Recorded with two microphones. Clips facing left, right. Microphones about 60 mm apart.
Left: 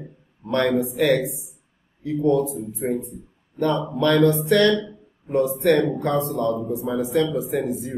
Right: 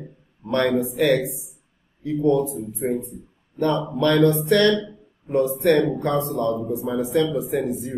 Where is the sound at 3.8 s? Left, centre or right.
Centre.